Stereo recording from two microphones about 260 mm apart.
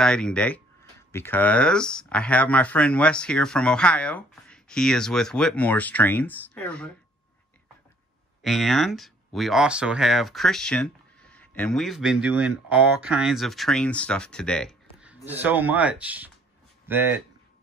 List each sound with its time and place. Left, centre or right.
0.0 s speech: centre
8.4 s speech: centre